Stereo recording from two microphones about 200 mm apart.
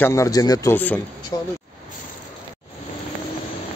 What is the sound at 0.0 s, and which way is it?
Speech, 15° left (ahead or behind).